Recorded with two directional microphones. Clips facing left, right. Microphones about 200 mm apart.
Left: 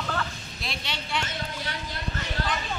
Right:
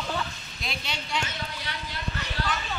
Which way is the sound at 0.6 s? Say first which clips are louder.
Even; centre (ahead or behind).